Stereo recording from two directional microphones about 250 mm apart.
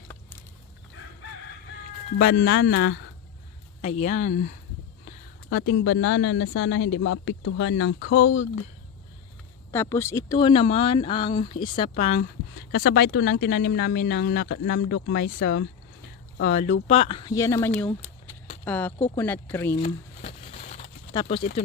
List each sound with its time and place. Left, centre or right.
2.1 s speech: left
3.8 s speech: left
5.5 s speech: left
9.7 s speech: centre; by 12.3 s left
12.9 s speech: left; by 19.8 s centre
19.8 s crumpling: left
21.1 s speech: centre